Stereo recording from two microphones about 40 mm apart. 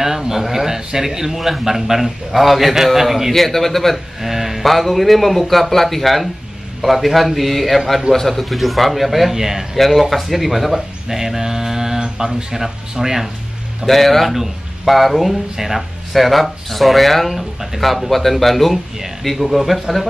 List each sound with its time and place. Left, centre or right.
0.0 s a man's voice: centre
4.2 s speech: centre
9.8 s a man's voice: centre
13.8 s speech: centre